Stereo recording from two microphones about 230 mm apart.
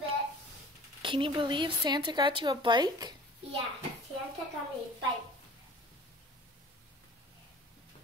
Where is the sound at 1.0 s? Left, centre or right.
Right.